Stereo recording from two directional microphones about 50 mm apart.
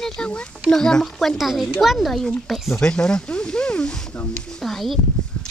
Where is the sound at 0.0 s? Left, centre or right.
Centre.